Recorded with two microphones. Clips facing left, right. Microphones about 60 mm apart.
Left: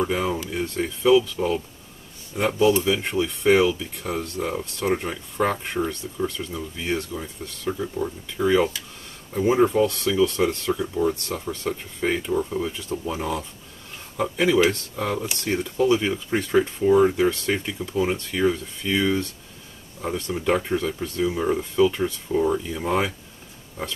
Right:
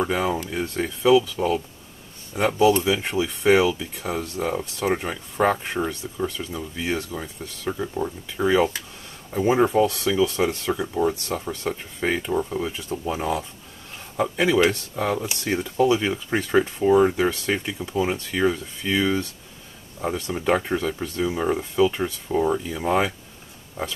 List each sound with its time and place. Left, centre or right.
0.1 s speech: centre
7.6 s speech: centre
10.7 s speech: centre
20.0 s speech: centre